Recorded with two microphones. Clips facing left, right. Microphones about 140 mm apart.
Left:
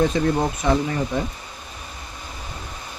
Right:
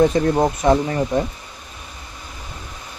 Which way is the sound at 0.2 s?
45° right (ahead or behind).